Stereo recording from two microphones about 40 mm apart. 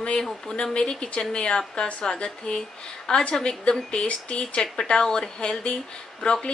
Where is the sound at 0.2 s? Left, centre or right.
Centre.